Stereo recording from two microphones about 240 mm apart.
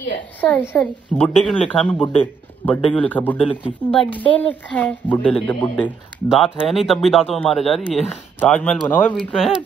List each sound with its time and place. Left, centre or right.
0.4 s speech: centre